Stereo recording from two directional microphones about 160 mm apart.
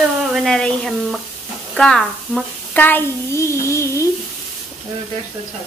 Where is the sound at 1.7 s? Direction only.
5° left (ahead or behind).